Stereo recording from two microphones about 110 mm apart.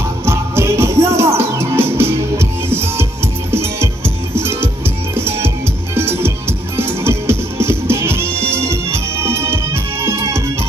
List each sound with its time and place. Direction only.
0.2 s music: 20° right (ahead or behind)
4.4 s music: 20° right (ahead or behind)